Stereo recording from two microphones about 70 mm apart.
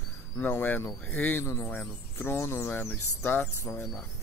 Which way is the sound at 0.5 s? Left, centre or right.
Left.